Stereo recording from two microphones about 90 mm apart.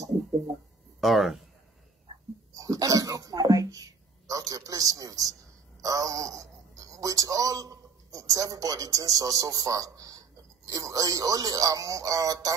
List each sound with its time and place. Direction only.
1.0 s speech: centre (ahead or behind)
2.5 s a sound: 40° right (ahead or behind)
4.3 s a man's voice: 40° right (ahead or behind)